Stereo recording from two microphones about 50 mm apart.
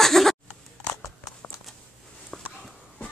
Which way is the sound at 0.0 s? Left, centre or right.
Centre.